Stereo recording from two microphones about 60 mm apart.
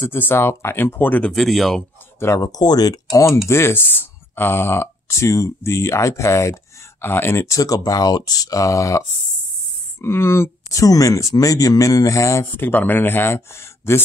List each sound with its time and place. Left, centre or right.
0.0 s speech: left
1.3 s speech: centre
2.1 s speech: left
2.4 s speech: left
3.4 s speech: left
7.0 s speech: left
7.5 s speech: left
10.0 s speech: left
10.7 s speech: left
12.5 s speech: left